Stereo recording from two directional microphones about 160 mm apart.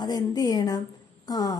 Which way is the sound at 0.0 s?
25° left (ahead or behind).